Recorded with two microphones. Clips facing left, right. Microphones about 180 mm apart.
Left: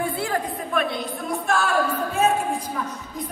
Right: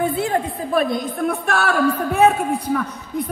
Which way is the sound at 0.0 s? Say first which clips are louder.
Right 5 dB; 20° right (ahead or behind).